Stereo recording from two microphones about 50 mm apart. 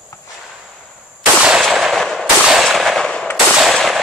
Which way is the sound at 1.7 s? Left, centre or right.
Centre.